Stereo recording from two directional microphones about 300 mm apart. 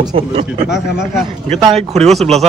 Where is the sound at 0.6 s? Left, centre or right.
Centre.